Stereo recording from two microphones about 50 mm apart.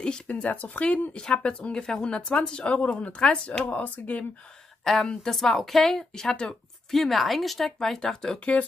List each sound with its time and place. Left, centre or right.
0.3 s speech: left
3.6 s speech: left
4.8 s a woman's voice: centre